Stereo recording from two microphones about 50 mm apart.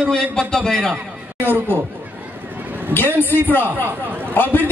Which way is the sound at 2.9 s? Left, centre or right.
Left.